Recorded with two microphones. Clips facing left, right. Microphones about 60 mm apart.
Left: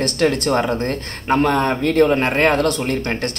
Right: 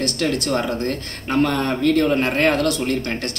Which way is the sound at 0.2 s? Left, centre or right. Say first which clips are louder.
Left 5 dB; left.